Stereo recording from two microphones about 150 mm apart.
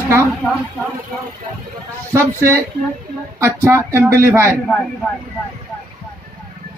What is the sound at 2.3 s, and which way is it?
A man's voice, 20° right (ahead or behind).